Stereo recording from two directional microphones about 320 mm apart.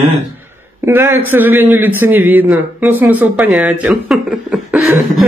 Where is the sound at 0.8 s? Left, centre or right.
Centre.